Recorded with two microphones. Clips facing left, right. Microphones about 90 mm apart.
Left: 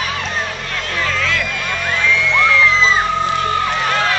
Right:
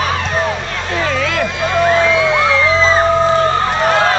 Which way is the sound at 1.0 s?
45° right (ahead or behind).